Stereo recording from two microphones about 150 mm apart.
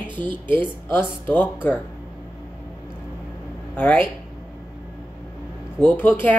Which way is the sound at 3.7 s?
10° left (ahead or behind).